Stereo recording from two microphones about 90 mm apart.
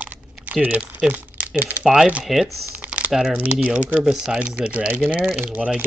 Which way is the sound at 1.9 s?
5° right (ahead or behind).